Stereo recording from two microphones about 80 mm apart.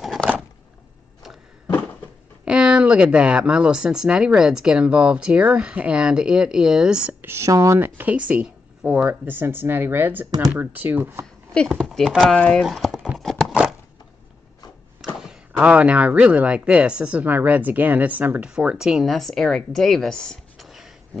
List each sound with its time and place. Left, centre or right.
2.4 s speech: centre
7.2 s speech: right
7.8 s speech: right
12.0 s speech: centre
12.4 s speech: centre
12.6 s clip-clop: centre
15.1 s speech: centre
19.0 s speech: centre